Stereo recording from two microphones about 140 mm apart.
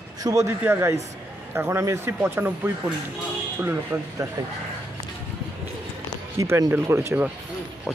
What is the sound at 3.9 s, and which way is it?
Speech, 20° right (ahead or behind).